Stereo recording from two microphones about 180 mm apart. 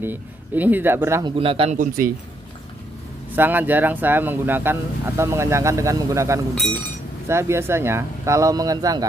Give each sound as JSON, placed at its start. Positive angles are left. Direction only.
{"t": 0.0, "sound": "speech", "side_deg": -10}
{"t": 1.2, "sound": "a man's voice", "side_deg": -30}
{"t": 3.3, "sound": "speech", "side_deg": -10}